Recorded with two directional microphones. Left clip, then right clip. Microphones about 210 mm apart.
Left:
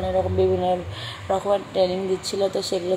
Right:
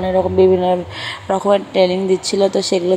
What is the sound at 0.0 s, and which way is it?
Speech, 20° right (ahead or behind).